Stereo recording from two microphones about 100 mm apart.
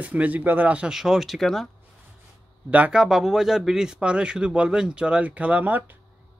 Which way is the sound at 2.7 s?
15° right (ahead or behind).